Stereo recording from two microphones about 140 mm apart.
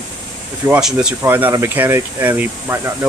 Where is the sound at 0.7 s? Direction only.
5° right (ahead or behind).